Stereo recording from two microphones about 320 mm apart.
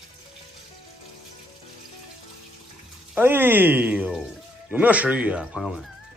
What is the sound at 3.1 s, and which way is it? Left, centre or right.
Speech, centre.